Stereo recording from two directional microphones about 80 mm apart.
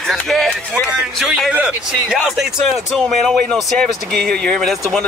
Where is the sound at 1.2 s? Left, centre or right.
Centre.